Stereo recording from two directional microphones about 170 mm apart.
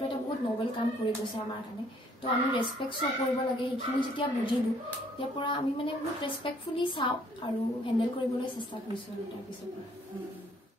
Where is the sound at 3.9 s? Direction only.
30° left (ahead or behind).